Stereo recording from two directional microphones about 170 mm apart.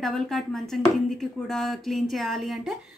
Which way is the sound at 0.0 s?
Centre (ahead or behind).